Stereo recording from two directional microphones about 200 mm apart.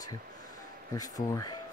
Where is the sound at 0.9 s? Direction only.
20° left (ahead or behind).